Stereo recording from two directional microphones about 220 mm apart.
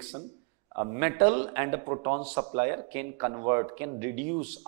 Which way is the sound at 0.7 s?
15° right (ahead or behind).